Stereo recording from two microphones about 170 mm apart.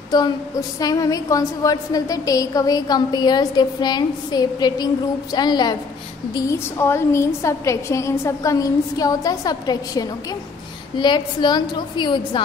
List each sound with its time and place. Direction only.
0.1 s a woman's voice: 25° left (ahead or behind)